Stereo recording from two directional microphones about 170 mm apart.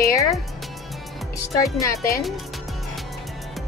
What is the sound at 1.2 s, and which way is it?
Speech, centre (ahead or behind).